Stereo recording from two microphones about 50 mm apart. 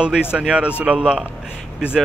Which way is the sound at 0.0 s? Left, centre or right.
Right.